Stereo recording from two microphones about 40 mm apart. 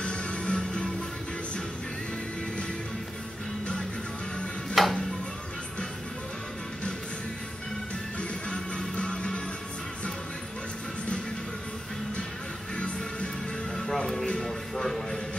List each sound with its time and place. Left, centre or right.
0.0 s music: left
4.8 s music: centre
8.2 s music: left
12.7 s music: left
13.7 s music: centre